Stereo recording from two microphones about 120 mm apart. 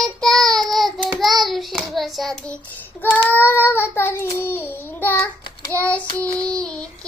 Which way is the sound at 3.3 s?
15° left (ahead or behind).